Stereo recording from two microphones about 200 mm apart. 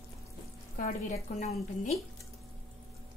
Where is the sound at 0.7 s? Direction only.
40° left (ahead or behind).